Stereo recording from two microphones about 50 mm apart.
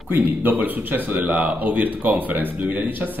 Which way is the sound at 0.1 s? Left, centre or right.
Right.